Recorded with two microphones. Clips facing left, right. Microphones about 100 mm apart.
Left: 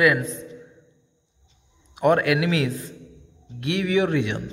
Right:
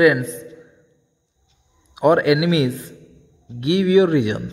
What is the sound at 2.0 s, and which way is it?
A man's voice, 20° right (ahead or behind).